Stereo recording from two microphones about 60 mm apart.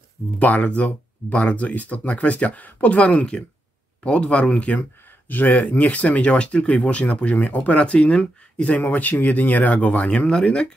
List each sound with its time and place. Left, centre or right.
0.4 s speech: left